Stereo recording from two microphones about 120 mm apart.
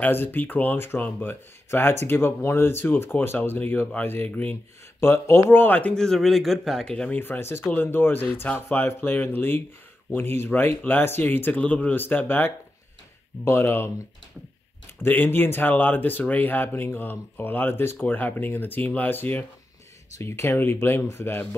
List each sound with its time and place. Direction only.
0.0 s speech: 15° left (ahead or behind)
7.2 s speech: 20° left (ahead or behind)